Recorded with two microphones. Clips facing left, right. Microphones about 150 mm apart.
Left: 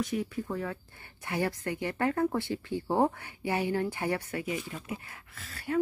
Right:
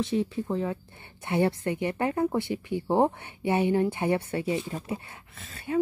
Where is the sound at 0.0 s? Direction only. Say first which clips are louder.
Right 4 dB; 25° right (ahead or behind).